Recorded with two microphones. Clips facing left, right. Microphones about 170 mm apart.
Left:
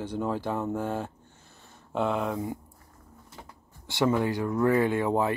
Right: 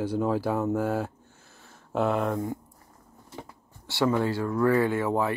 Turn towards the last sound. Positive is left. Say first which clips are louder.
# even
turn(degrees=20)  # may be behind; listen again after turning